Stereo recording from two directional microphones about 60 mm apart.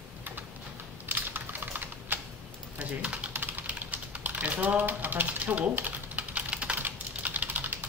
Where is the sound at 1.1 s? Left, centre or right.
Right.